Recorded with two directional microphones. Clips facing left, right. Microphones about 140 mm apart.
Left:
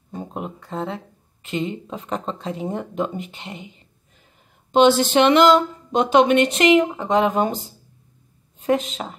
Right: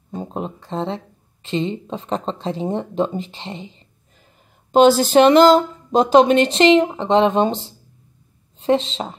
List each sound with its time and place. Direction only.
0.1 s a woman's voice: 30° right (ahead or behind)